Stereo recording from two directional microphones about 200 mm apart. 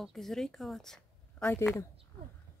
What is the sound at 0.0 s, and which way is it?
A woman's voice, centre (ahead or behind).